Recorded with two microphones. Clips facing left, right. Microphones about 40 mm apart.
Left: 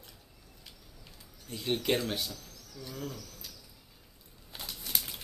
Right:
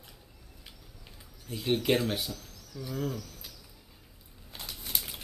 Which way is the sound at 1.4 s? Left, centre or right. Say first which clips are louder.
Right 3 dB; centre.